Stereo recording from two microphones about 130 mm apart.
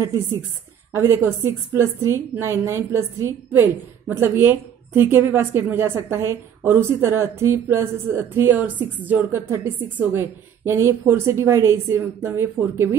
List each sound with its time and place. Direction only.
0.9 s a woman's voice: 20° right (ahead or behind)